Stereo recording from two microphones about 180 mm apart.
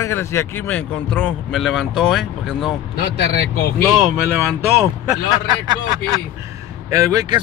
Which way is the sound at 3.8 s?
Centre (ahead or behind).